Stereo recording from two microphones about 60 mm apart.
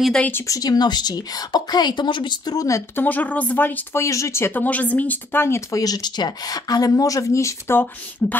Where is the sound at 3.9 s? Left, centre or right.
Left.